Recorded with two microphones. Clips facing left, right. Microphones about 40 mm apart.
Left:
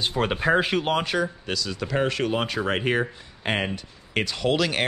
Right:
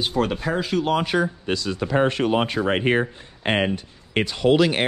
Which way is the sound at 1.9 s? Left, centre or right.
Right.